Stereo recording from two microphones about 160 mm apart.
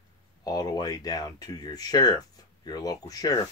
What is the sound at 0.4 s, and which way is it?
Speech, 25° left (ahead or behind).